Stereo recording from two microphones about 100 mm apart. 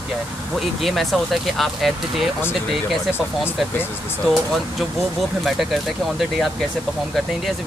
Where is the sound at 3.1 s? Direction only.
20° left (ahead or behind).